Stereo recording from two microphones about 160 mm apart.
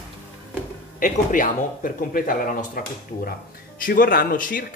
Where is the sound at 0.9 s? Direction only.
55° left (ahead or behind).